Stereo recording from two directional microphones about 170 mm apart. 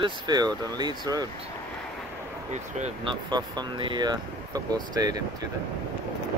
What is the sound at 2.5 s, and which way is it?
Speech, 45° right (ahead or behind).